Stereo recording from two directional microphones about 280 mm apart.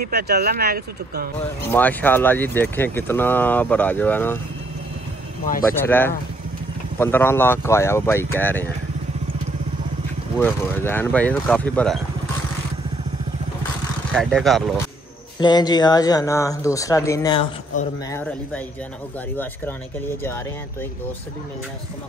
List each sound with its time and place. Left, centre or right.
0.0 s speech: right
1.4 s speech: centre
5.8 s speech: centre
10.4 s speech: centre
14.1 s speech: centre
15.4 s speech: centre